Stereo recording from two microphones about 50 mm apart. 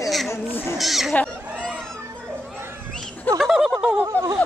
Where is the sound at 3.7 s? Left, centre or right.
Centre.